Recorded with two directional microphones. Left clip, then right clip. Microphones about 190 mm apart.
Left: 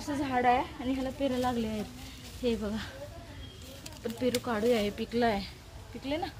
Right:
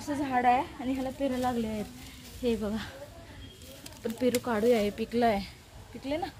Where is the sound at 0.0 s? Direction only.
25° right (ahead or behind).